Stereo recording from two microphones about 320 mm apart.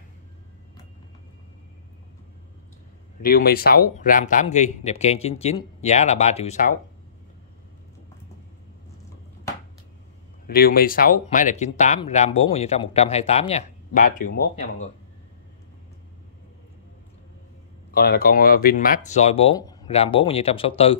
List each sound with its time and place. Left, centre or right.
3.2 s speech: left
10.4 s speech: left
17.9 s speech: left